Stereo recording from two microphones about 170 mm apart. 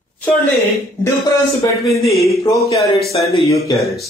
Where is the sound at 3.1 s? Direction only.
30° left (ahead or behind).